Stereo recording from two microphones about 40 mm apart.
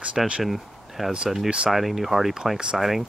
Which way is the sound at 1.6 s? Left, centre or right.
Centre.